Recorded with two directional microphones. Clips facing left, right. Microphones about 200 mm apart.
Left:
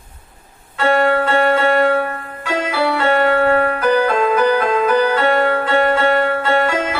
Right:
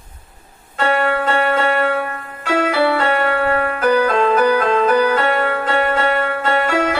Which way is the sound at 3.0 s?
30° left (ahead or behind).